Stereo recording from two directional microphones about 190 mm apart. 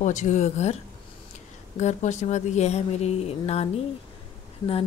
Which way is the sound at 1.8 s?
40° left (ahead or behind).